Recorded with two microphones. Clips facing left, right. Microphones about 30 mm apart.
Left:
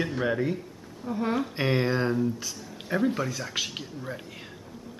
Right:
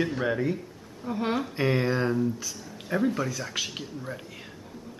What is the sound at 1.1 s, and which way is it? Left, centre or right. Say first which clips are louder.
Speech: even; right.